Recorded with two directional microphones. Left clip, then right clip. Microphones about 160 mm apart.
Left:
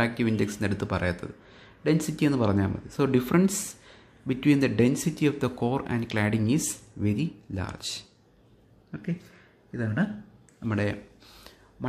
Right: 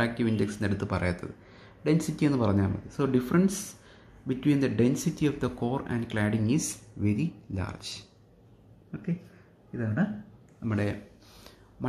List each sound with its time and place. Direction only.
0.0 s speech: 15° left (ahead or behind)
9.7 s speech: 25° left (ahead or behind)